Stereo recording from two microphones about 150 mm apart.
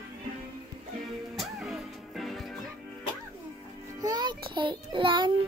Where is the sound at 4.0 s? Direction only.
25° right (ahead or behind).